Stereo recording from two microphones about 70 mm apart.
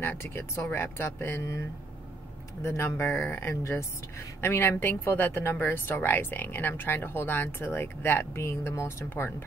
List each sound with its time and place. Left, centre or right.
0.0 s speech: left
2.6 s speech: left